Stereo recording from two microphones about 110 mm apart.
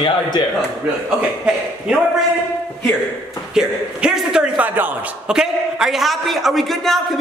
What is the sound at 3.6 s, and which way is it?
A man's voice, 5° right (ahead or behind).